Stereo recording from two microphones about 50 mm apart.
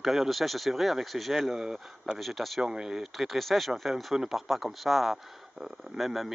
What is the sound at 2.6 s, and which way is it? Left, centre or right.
Speech, centre.